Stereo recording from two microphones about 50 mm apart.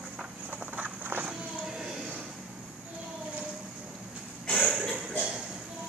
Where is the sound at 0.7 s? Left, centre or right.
Right.